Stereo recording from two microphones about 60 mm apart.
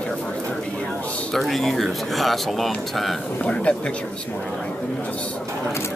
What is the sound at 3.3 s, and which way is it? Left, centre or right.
Speech, centre.